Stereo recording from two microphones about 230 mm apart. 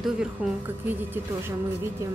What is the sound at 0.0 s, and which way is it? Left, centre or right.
A woman's voice, centre.